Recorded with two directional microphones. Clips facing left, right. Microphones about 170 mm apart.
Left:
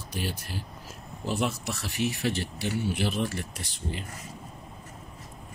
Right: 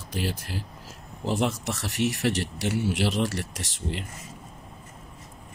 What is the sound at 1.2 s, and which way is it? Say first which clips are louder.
Speech: right 3 dB; 75° right (ahead or behind).